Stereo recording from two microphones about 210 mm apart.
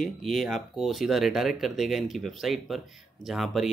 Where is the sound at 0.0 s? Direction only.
Centre (ahead or behind).